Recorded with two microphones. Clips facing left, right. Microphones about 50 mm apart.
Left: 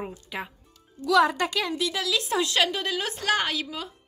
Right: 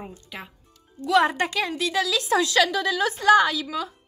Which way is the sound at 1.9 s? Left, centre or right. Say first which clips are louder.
Right 6 dB; right.